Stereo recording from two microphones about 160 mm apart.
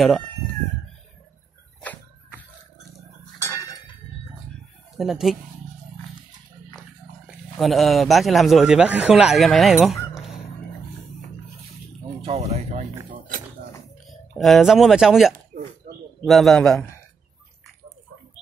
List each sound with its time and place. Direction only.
3.3 s tick-tock: 20° left (ahead or behind)
4.9 s a man's voice: centre (ahead or behind)
7.5 s a man's voice: centre (ahead or behind)
12.2 s a sound: 45° right (ahead or behind)
14.0 s a man's voice: centre (ahead or behind)